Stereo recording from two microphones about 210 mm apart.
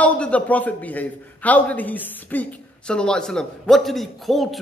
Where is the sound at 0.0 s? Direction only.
5° left (ahead or behind).